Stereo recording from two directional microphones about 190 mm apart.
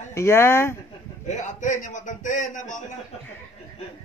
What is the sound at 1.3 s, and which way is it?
A man's voice, 40° left (ahead or behind).